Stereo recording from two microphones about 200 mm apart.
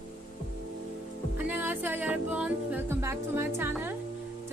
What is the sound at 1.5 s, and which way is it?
A woman's voice, 10° right (ahead or behind).